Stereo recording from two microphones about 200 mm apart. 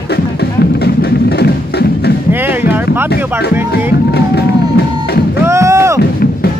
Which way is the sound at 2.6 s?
10° right (ahead or behind).